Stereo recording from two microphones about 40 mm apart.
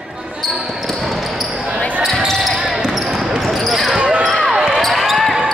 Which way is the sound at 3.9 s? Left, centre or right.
Right.